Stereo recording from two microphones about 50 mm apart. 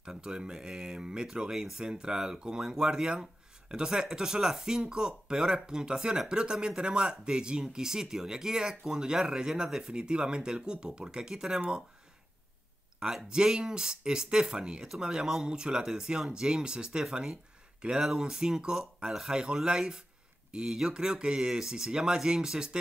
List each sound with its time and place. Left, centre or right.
0.0 s speech: centre
13.0 s speech: centre